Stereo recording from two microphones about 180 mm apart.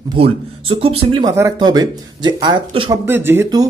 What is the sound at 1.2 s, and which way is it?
Speech, 20° right (ahead or behind).